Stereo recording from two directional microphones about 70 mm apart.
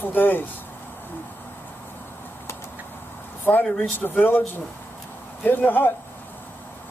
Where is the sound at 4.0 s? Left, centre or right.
Left.